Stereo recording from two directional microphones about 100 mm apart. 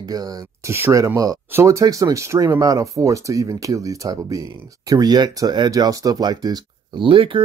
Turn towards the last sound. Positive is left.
turn(degrees=-60)  # may be behind; listen again after turning